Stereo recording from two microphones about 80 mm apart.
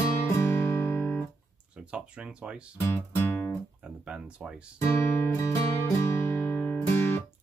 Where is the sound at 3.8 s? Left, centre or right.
Centre.